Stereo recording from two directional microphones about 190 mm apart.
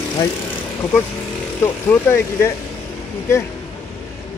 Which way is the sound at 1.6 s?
10° left (ahead or behind).